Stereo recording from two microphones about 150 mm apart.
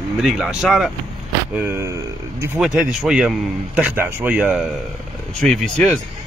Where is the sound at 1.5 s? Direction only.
15° right (ahead or behind).